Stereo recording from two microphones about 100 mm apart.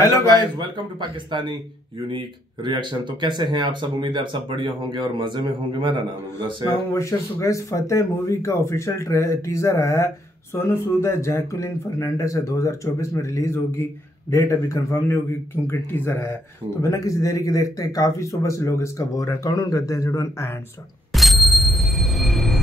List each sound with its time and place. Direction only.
0.6 s speech: 50° right (ahead or behind)
6.7 s a man's voice: 30° left (ahead or behind)
21.1 s bicycle bell: centre (ahead or behind)